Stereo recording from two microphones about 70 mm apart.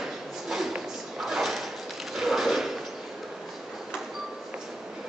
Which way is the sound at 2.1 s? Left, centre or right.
Centre.